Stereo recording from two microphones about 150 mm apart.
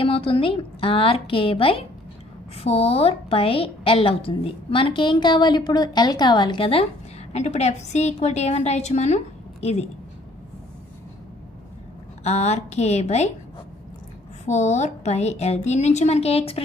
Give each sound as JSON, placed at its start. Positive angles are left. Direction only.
{"t": 0.0, "sound": "a woman's voice", "side_deg": 35}
{"t": 7.3, "sound": "a woman's voice", "side_deg": 50}
{"t": 12.2, "sound": "a woman's voice", "side_deg": 45}
{"t": 14.4, "sound": "a woman's voice", "side_deg": 50}